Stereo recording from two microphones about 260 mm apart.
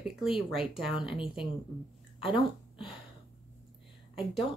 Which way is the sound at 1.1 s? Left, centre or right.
Centre.